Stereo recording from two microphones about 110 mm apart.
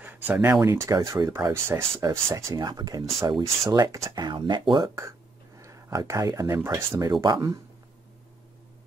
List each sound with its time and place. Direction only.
0.0 s a sound: 20° right (ahead or behind)
0.6 s speech: 30° right (ahead or behind); by 4.9 s 45° right (ahead or behind)
5.6 s speech: 30° right (ahead or behind)
7.1 s speech: 35° right (ahead or behind)